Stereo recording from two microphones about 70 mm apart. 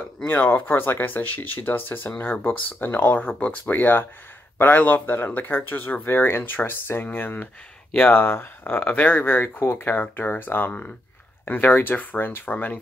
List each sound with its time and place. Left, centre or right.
0.3 s speech: left